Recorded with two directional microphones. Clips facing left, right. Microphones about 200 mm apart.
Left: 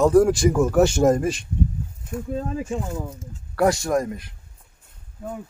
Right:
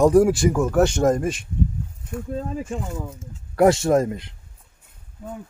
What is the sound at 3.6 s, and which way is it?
Speech, 25° right (ahead or behind).